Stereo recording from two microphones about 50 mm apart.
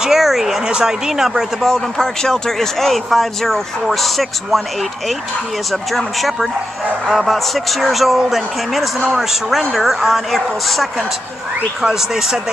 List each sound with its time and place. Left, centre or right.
0.0 s a sound: centre
0.7 s speech: centre
1.6 s speech: centre
5.7 s speech: centre